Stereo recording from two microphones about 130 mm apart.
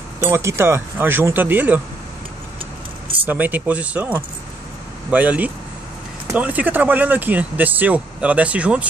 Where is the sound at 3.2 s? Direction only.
15° right (ahead or behind).